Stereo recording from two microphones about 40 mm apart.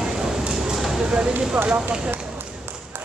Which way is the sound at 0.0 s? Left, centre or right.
Centre.